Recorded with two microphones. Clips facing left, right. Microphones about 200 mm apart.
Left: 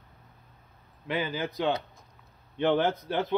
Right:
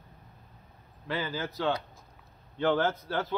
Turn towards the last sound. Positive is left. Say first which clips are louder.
# left 2 dB
turn(degrees=15)  # may be behind; listen again after turning